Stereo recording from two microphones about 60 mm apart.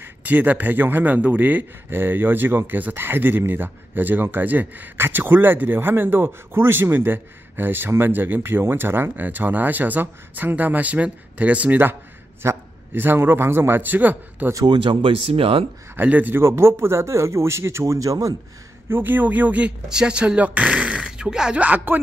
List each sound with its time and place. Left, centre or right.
0.0 s a man's voice: right
16.0 s speech: right
16.3 s speech: right
18.9 s speech: right
19.9 s speech: centre
21.6 s a man's voice: right